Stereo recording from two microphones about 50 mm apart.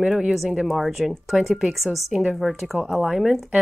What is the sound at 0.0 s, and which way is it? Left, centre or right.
Speech, centre.